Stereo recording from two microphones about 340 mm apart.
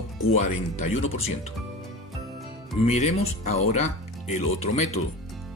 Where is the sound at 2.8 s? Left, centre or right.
Centre.